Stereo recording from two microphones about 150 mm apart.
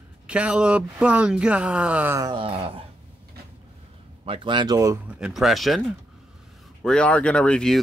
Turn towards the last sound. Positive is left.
turn(degrees=5)  # may be behind; listen again after turning